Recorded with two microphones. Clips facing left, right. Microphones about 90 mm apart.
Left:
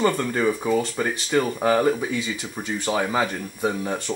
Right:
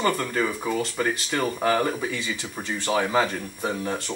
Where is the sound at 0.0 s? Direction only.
15° left (ahead or behind).